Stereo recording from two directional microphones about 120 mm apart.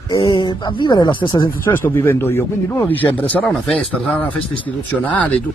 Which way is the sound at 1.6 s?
20° left (ahead or behind).